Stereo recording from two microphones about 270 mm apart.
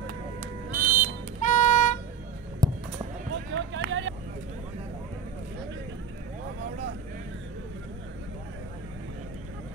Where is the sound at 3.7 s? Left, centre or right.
Right.